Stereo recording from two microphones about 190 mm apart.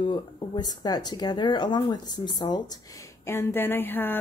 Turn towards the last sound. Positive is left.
turn(degrees=10)  # may be behind; listen again after turning